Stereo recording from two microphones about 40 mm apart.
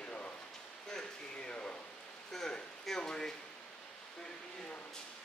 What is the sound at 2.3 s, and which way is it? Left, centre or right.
Speech, centre.